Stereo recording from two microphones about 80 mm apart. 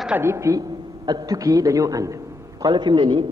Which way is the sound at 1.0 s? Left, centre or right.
Right.